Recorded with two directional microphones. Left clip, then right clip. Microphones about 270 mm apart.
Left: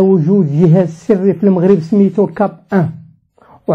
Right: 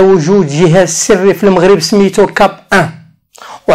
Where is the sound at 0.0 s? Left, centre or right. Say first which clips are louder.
Right 5 dB; right.